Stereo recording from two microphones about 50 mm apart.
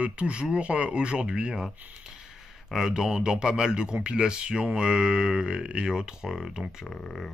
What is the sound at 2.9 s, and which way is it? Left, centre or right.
Speech, centre.